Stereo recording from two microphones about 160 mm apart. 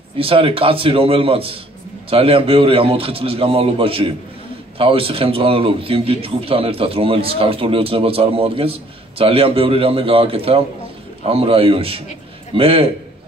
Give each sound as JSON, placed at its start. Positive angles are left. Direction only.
{"t": 0.2, "sound": "a man's voice", "side_deg": -35}